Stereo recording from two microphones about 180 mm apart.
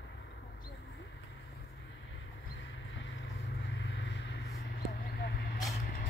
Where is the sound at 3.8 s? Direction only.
80° left; by 5.6 s 60° left (ahead or behind).